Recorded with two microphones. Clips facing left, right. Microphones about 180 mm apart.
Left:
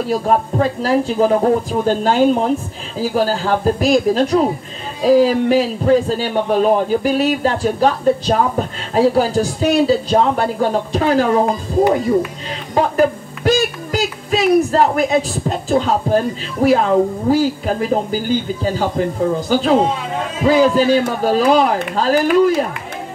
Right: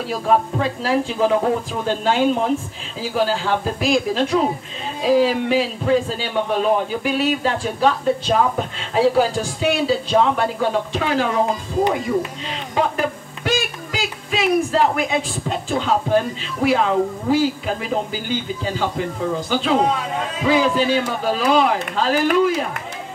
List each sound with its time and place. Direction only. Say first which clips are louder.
0.0 s a man's voice: left 3 dB; 40° left (ahead or behind)
12.7 s a man's voice: left 6 dB; 40° left (ahead or behind)